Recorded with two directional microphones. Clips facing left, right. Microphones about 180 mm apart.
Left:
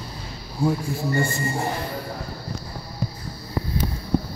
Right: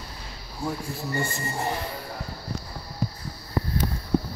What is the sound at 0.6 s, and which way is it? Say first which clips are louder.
Speech: left 8 dB; 30° left (ahead or behind).